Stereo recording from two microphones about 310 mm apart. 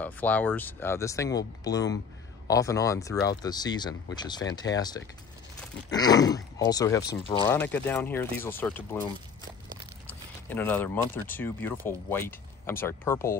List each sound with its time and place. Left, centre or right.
0.0 s speech: centre
10.0 s speech: centre